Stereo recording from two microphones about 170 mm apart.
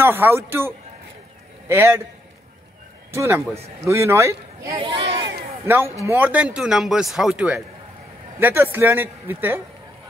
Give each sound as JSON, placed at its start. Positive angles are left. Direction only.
{"t": 0.0, "sound": "a man's voice", "side_deg": -15}
{"t": 3.1, "sound": "a man's voice", "side_deg": -15}
{"t": 4.7, "sound": "speech", "side_deg": -35}
{"t": 6.0, "sound": "a man's voice", "side_deg": -10}